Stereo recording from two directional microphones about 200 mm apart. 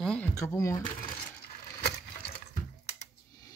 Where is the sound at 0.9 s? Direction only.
25° left (ahead or behind).